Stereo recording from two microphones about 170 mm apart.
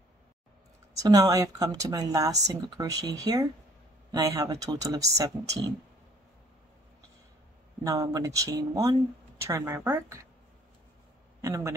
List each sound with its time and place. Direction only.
0.9 s speech: 20° right (ahead or behind)
7.8 s speech: 20° right (ahead or behind)
11.4 s speech: 15° right (ahead or behind)